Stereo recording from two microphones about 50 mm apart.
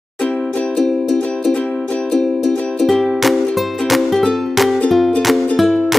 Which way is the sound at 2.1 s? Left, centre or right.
Centre.